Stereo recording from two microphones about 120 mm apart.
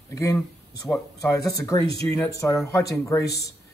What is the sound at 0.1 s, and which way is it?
Speech, 25° left (ahead or behind).